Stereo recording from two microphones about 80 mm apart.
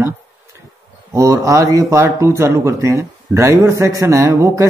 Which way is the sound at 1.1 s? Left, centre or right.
Right.